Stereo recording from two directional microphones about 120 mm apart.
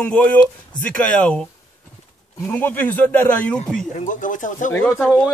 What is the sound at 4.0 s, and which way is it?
Speech, 90° left.